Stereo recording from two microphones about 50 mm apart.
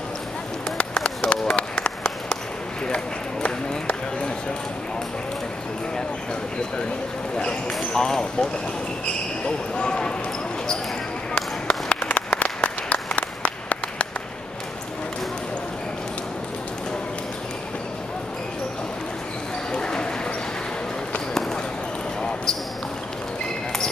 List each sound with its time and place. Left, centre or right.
0.7 s run: centre
3.4 s a sound: left
7.3 s basketball bounce: centre
9.5 s basketball bounce: centre
11.3 s applause: left
19.7 s a sound: centre